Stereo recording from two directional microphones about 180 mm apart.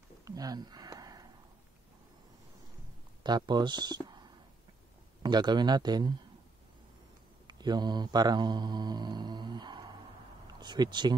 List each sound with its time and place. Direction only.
0.2 s a sound: 20° right (ahead or behind)
3.3 s speech: 25° right (ahead or behind)
7.4 s mantra: 25° right (ahead or behind)
10.4 s speech: 25° right (ahead or behind)